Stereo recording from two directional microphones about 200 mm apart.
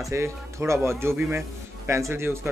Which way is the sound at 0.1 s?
15° right (ahead or behind).